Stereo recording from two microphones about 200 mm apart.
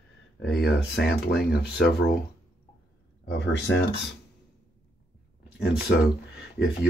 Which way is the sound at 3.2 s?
60° left (ahead or behind).